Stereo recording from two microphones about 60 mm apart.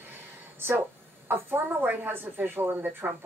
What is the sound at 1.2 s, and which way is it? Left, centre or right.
Speech, right.